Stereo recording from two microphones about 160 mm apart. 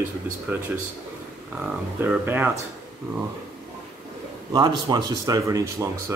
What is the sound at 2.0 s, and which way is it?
Speech, 10° right (ahead or behind).